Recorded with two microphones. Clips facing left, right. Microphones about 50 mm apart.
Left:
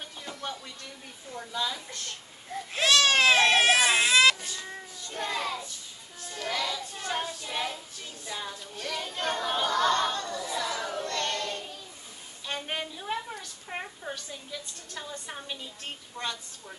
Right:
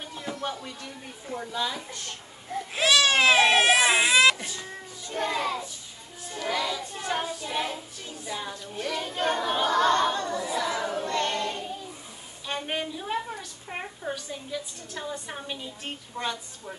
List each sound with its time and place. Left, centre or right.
0.1 s music: centre
1.3 s a woman's voice: centre
1.9 s baby cry: centre
4.5 s child singing: centre
8.3 s a sound: centre